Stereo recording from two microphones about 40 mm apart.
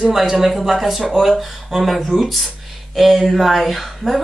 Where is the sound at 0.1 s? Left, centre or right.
Centre.